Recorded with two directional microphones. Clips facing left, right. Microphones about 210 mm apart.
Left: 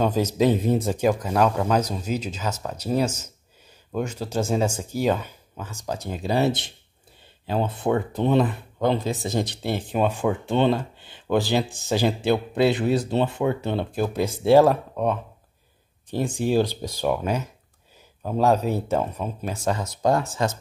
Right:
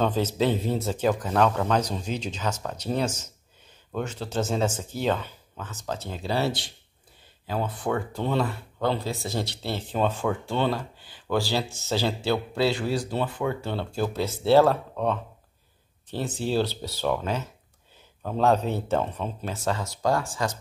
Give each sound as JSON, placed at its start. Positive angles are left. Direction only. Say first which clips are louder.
{"t": 0.0, "sound": "speech", "louder": "left 3 dB", "side_deg": 10}